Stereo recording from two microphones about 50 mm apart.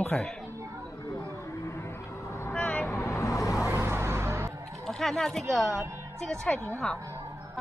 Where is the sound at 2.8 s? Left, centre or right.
Left.